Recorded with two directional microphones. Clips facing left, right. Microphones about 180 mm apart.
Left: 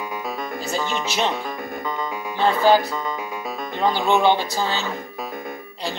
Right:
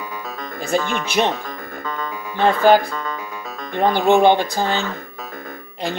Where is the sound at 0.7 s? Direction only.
55° right (ahead or behind).